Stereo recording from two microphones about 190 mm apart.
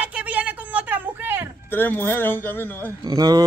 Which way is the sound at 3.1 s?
20° right (ahead or behind).